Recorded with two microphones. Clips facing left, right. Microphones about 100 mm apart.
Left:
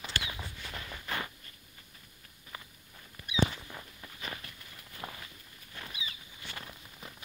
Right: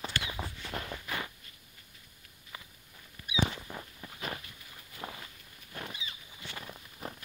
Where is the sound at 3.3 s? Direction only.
15° right (ahead or behind).